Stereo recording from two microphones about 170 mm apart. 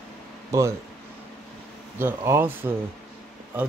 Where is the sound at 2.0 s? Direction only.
15° right (ahead or behind).